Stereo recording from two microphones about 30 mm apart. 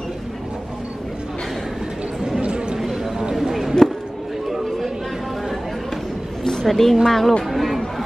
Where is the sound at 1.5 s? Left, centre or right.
Centre.